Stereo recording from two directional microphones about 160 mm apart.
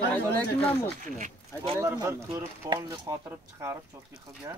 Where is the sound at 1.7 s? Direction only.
15° right (ahead or behind).